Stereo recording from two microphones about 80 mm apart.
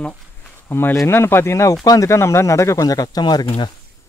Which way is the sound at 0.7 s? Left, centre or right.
Left.